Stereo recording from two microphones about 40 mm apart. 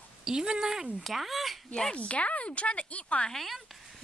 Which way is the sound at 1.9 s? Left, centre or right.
Left.